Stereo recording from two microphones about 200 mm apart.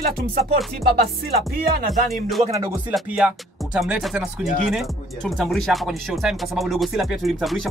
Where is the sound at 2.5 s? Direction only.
15° right (ahead or behind).